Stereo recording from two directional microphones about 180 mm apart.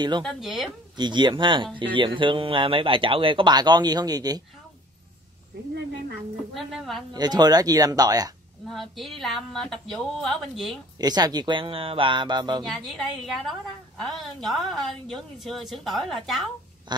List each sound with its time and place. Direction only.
0.2 s a woman's voice: centre (ahead or behind)
0.9 s speech: 25° right (ahead or behind)
6.5 s a woman's voice: centre (ahead or behind)
7.2 s speech: 20° right (ahead or behind)
8.6 s a woman's voice: centre (ahead or behind)
11.0 s speech: 20° right (ahead or behind)
12.6 s a woman's voice: centre (ahead or behind)